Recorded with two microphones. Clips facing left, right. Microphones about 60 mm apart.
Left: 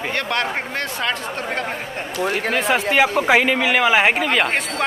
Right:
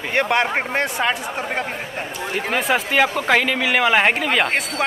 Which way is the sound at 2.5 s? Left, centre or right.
Centre.